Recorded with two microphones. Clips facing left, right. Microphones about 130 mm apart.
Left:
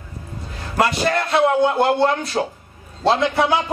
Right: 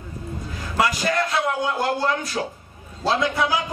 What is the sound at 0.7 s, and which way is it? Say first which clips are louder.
A man's voice: left 3 dB; 30° left (ahead or behind).